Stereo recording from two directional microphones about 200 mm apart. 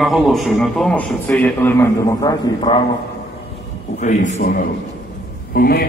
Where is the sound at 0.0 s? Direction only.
Centre (ahead or behind); by 2.8 s 20° left (ahead or behind).